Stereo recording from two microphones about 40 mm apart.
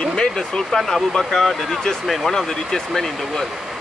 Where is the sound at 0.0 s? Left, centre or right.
Left.